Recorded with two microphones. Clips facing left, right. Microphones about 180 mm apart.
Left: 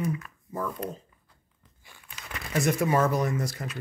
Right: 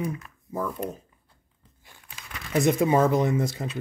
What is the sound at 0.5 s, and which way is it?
Speech, 5° right (ahead or behind).